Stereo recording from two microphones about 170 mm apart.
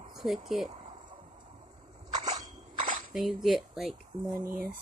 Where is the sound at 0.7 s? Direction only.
30° right (ahead or behind).